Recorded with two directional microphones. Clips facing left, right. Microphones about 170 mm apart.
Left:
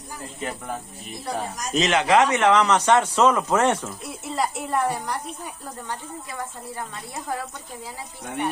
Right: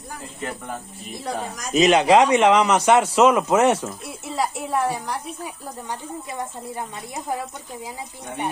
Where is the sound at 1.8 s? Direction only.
15° right (ahead or behind); by 5.2 s centre (ahead or behind).